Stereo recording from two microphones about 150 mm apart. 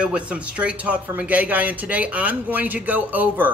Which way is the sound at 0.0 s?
5° right (ahead or behind).